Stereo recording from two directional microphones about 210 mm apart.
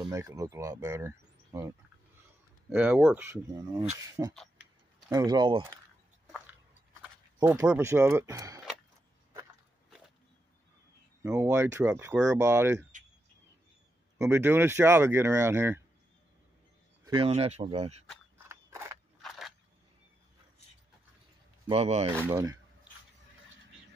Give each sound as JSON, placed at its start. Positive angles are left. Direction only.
{"t": 0.1, "sound": "speech", "side_deg": -15}
{"t": 4.3, "sound": "speech", "side_deg": 0}
{"t": 5.1, "sound": "speech", "side_deg": -20}
{"t": 7.0, "sound": "speech", "side_deg": -10}
{"t": 11.2, "sound": "speech", "side_deg": -15}
{"t": 14.1, "sound": "speech", "side_deg": -10}
{"t": 17.0, "sound": "speech", "side_deg": -25}
{"t": 18.5, "sound": "a sound", "side_deg": -10}
{"t": 19.2, "sound": "a sound", "side_deg": 0}
{"t": 21.6, "sound": "speech", "side_deg": -30}
{"t": 22.2, "sound": "speech", "side_deg": -15}